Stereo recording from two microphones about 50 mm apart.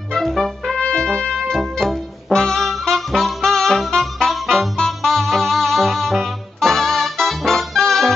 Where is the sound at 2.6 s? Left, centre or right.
Centre.